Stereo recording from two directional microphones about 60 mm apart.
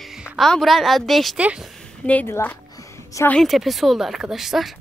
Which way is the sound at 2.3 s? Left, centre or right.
Left.